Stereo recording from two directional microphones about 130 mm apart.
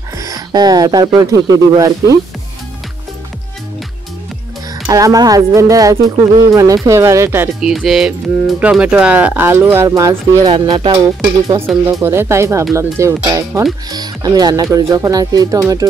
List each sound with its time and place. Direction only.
0.2 s speech: 30° right (ahead or behind)
4.8 s speech: 25° right (ahead or behind)
7.6 s music: centre (ahead or behind)
8.5 s speech: 10° right (ahead or behind)
10.5 s speech: 45° right (ahead or behind)
11.1 s speech: 30° right (ahead or behind)